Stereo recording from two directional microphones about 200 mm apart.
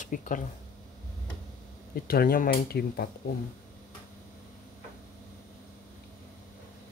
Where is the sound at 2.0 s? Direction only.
45° left (ahead or behind).